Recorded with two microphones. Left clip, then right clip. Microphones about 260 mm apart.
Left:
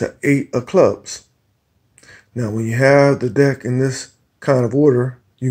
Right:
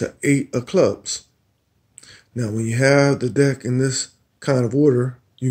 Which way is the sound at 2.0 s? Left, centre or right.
Centre.